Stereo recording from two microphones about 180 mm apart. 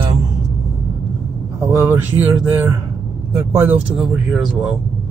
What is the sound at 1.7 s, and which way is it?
Speech, 15° right (ahead or behind).